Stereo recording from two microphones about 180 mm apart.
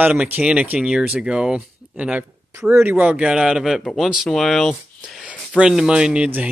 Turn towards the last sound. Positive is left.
turn(degrees=-5)  # may be behind; listen again after turning